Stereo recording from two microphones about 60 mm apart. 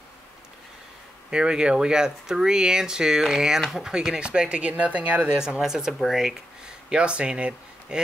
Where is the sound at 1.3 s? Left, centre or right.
Centre.